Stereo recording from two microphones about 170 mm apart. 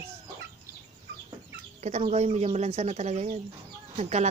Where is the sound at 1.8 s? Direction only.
40° right (ahead or behind).